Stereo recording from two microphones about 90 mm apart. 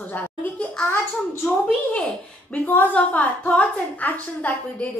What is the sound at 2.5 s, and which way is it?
A woman's voice, 15° left (ahead or behind).